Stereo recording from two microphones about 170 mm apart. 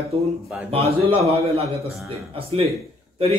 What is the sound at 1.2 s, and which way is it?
A man's voice, 35° right (ahead or behind).